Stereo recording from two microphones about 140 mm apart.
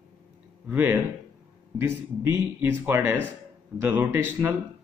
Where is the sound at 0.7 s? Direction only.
15° right (ahead or behind).